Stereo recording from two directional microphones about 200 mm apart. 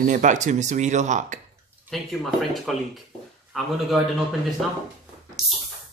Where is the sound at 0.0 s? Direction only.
40° right (ahead or behind).